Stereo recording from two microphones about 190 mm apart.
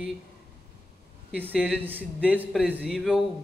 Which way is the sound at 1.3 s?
10° right (ahead or behind).